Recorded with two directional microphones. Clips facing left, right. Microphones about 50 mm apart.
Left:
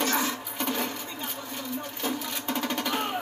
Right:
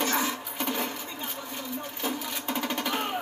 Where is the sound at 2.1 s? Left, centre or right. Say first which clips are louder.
Left 1 dB; centre.